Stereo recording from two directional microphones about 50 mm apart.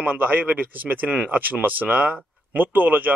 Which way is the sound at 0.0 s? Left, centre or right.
Right.